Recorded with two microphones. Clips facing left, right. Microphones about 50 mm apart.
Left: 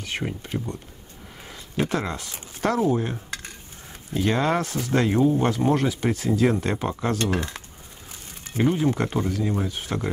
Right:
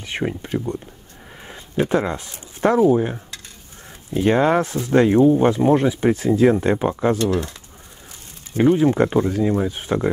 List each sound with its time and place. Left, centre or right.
0.0 s speech: right
1.5 s speech: right
2.8 s dishes: centre
4.1 s speech: right
7.2 s speech: left
8.6 s speech: centre